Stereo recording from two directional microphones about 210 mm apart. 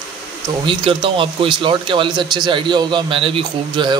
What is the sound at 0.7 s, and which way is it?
Speech, 25° right (ahead or behind).